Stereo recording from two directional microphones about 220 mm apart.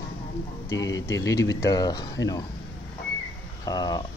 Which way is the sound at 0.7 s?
60° left (ahead or behind).